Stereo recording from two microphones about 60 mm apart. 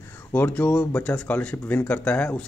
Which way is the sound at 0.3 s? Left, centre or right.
Left.